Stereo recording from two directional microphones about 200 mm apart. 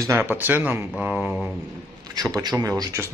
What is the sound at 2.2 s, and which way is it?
Speech, 20° right (ahead or behind).